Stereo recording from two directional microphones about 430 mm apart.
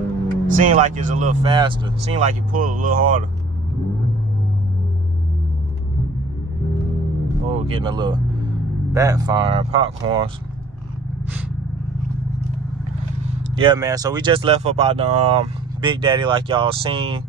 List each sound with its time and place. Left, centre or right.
0.5 s speech: centre
7.4 s speech: centre
13.6 s speech: centre